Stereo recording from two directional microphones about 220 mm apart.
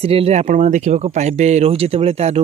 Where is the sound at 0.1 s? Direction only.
30° right (ahead or behind).